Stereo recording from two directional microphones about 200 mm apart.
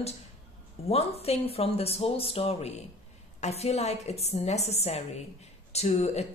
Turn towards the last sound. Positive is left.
turn(degrees=35)  # may be behind; listen again after turning